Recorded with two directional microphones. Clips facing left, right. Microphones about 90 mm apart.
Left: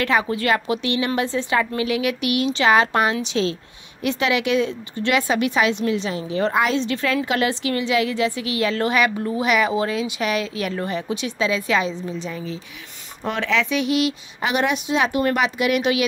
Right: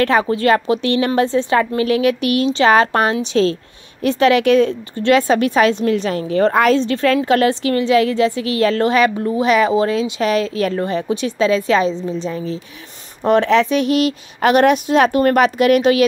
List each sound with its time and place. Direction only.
0.0 s a woman's voice: 35° right (ahead or behind)
13.2 s a woman's voice: 45° right (ahead or behind)